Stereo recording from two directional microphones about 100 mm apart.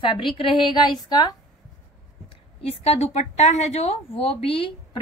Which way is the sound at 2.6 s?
80° left.